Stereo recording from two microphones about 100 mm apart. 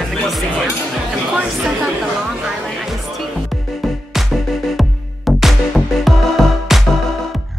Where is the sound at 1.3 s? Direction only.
10° right (ahead or behind).